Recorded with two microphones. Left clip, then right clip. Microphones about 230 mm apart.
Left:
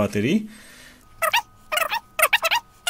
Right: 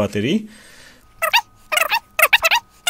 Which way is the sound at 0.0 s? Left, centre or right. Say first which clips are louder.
Right 2 dB; centre.